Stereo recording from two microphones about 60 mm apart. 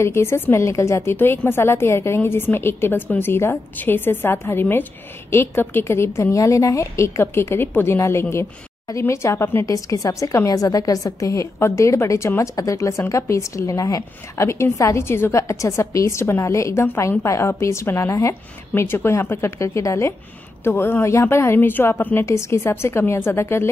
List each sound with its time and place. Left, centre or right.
0.0 s a woman's voice: left
1.1 s a woman's voice: left
6.3 s a woman's voice: left
9.7 s a woman's voice: left
15.4 s a woman's voice: left
19.6 s a woman's voice: left
20.6 s a woman's voice: left
21.5 s a woman's voice: left
22.2 s a woman's voice: left